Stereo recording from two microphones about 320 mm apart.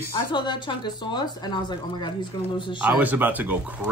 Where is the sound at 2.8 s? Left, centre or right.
Centre.